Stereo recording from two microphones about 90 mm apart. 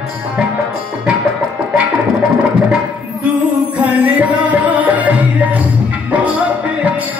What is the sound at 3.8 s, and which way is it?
Music, 15° right (ahead or behind).